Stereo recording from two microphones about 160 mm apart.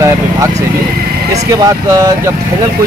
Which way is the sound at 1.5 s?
20° right (ahead or behind).